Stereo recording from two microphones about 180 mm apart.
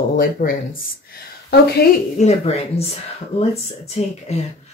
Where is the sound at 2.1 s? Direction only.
35° left (ahead or behind).